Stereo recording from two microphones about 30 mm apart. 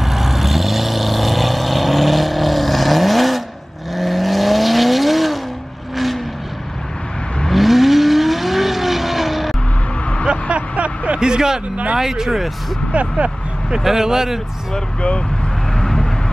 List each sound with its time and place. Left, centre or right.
0.0 s vehicle: centre
7.5 s vehicle: centre
10.5 s vehicle: right
11.1 s a sound: right
12.0 s speech: centre
12.9 s speech: right
13.7 s speech: centre
15.0 s speech: left
15.8 s vehicle: left